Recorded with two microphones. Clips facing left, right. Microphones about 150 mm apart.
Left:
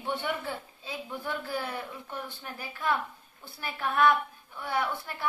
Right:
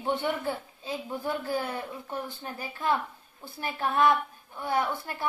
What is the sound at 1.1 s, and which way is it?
Speech, 35° right (ahead or behind).